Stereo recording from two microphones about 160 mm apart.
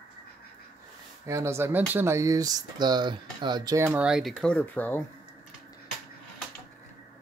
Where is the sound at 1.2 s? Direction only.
15° right (ahead or behind).